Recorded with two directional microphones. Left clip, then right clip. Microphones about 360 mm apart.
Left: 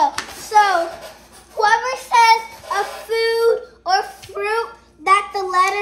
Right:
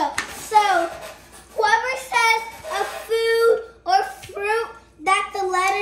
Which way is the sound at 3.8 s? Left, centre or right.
Centre.